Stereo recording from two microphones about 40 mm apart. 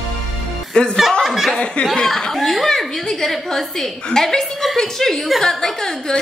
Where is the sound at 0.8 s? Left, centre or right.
Left.